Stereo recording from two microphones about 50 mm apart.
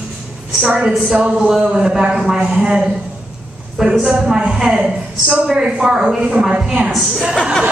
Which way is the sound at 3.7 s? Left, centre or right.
Centre.